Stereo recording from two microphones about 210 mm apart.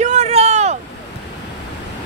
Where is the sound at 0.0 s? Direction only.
35° right (ahead or behind).